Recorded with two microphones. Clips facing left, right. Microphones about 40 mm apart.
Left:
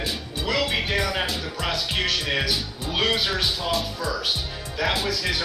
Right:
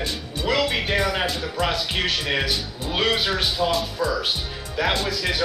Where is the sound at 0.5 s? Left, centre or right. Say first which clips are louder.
Right 2 dB; centre.